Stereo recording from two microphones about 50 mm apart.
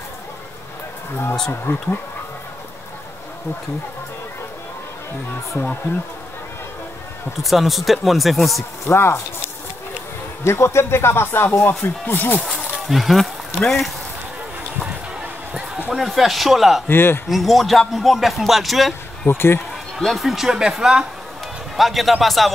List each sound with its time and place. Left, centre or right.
1.7 s speech: left
7.4 s speech: centre
8.8 s speech: left
10.4 s speech: left
11.8 s speech: left
12.4 s speech: centre
15.9 s speech: centre
16.8 s speech: left
17.3 s speech: centre
19.2 s speech: left
20.0 s speech: centre